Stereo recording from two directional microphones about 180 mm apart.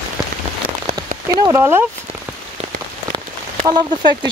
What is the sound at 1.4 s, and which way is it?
Speech, 15° right (ahead or behind).